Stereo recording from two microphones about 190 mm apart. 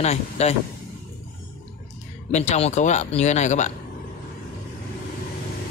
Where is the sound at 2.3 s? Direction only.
35° left (ahead or behind).